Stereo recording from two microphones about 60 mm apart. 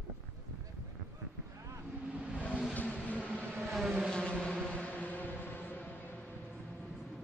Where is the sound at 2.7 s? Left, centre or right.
Left.